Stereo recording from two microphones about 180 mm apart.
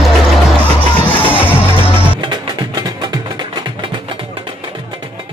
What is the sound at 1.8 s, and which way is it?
Music, 25° right (ahead or behind).